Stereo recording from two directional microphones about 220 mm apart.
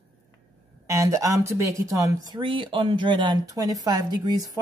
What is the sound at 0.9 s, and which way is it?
Speech, 15° right (ahead or behind).